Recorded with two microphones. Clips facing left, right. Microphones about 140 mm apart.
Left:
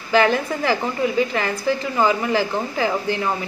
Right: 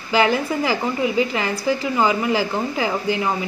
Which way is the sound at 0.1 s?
10° right (ahead or behind).